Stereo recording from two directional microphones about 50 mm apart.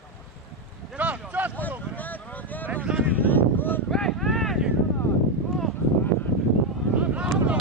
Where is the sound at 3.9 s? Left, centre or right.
Centre.